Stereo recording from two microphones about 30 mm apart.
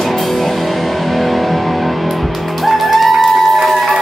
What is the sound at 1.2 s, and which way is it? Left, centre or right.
Music, centre.